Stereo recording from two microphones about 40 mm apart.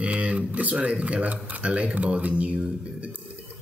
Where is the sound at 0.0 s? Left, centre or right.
Right.